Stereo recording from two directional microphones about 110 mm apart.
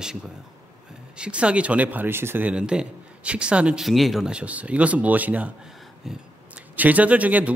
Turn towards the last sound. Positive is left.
turn(degrees=-15)  # may be behind; listen again after turning